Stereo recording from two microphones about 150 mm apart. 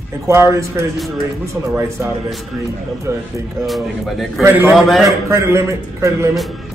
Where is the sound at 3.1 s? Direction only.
15° right (ahead or behind).